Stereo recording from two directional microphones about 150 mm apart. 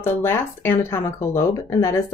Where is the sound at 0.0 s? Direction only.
15° left (ahead or behind).